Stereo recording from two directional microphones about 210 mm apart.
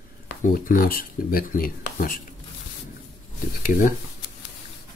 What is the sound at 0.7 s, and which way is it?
Speech, 45° left (ahead or behind).